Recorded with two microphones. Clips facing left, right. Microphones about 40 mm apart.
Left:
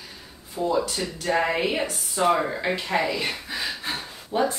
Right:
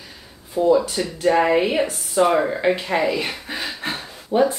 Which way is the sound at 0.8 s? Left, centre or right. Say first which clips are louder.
Right 8 dB; right.